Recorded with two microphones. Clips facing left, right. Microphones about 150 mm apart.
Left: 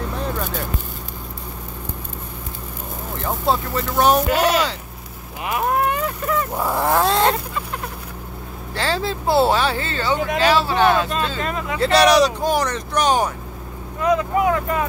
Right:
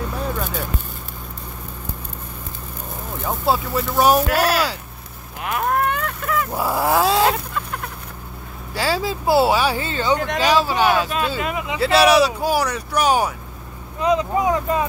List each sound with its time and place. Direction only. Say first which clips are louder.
0.2 s a sound: even; centre (ahead or behind)
3.2 s speech: even; 5° right (ahead or behind)
5.4 s a sound: left 1 dB; 5° left (ahead or behind)
6.6 s dog: right 1 dB; 5° right (ahead or behind)
8.7 s speech: right 1 dB; 10° right (ahead or behind)
13.9 s speech: even; 20° right (ahead or behind)